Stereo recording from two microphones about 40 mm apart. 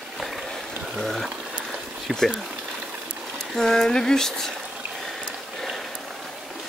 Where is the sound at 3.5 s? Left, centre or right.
Centre.